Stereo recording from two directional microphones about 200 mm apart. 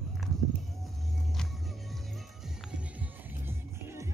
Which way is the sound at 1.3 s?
Centre (ahead or behind).